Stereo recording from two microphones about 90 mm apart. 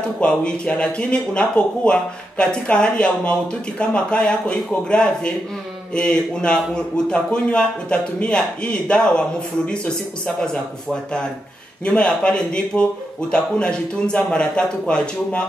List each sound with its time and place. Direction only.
0.2 s speech: 10° left (ahead or behind)